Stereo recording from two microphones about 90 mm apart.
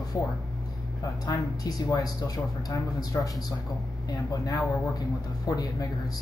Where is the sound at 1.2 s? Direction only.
45° left (ahead or behind).